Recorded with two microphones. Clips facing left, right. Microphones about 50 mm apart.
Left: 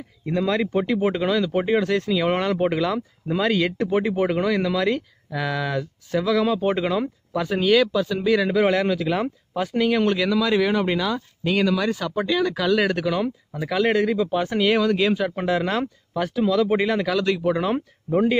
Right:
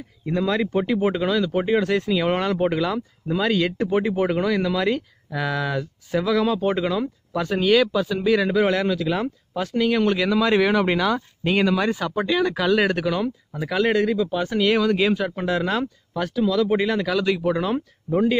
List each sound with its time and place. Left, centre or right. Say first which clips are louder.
0.3 s speech: even; centre
10.5 s speech: right 2 dB; right
11.4 s speech: right 1 dB; right
13.5 s speech: even; centre
14.1 s speech: even; centre
14.7 s speech: right 1 dB; centre
16.3 s speech: even; centre
17.1 s speech: even; centre
17.6 s speech: even; left